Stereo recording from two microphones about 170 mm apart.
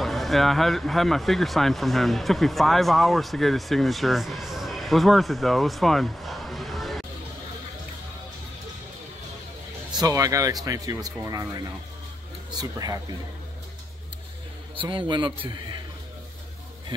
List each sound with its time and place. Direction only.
0.0 s speech: centre (ahead or behind)
9.9 s speech: 20° right (ahead or behind)
14.8 s speech: 30° right (ahead or behind)